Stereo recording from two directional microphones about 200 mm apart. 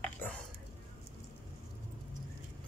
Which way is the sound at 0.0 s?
5° left (ahead or behind).